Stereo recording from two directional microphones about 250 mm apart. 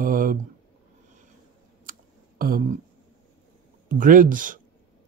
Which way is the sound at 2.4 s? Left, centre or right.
Right.